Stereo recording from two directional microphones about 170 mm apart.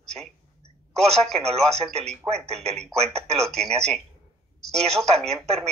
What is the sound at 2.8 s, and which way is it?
A man's voice, 5° left (ahead or behind).